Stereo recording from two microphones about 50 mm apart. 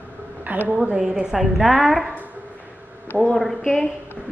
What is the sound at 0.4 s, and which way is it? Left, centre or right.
Speech, right.